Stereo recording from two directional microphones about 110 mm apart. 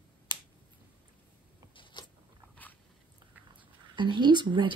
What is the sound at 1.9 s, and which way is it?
Biting, 40° left (ahead or behind).